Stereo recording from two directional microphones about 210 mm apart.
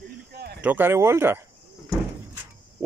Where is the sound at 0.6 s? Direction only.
10° right (ahead or behind).